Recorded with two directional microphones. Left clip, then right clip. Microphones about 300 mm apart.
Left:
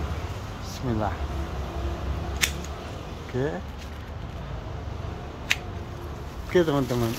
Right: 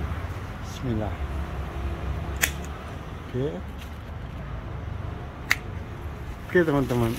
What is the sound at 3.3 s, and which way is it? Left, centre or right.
Speech, left.